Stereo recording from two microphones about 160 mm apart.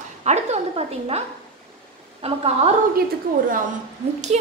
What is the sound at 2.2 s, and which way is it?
Speech, 40° right (ahead or behind).